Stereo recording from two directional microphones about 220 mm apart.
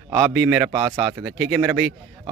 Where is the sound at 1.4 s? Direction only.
Centre (ahead or behind).